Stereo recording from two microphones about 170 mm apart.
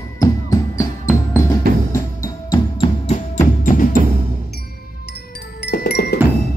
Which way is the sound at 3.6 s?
55° left (ahead or behind).